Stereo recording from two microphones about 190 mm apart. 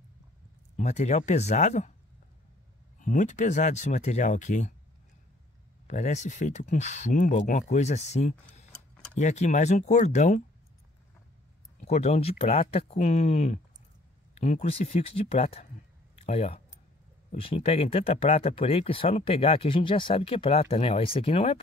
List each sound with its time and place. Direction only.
0.7 s speech: 35° left (ahead or behind)
3.0 s speech: 40° left (ahead or behind)
5.9 s speech: 40° left (ahead or behind)
11.8 s speech: 35° left (ahead or behind)
16.2 s a sound: 35° left (ahead or behind)
17.3 s speech: 30° left (ahead or behind)